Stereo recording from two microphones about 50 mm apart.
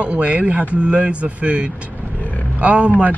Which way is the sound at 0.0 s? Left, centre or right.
Right.